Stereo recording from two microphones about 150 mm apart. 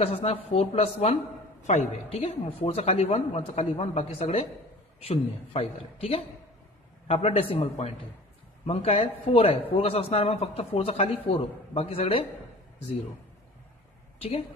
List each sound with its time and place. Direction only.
0.0 s a man's voice: 40° left (ahead or behind)